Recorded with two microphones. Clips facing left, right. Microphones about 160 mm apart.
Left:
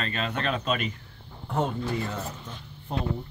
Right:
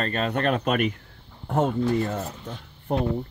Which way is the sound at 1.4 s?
45° right (ahead or behind).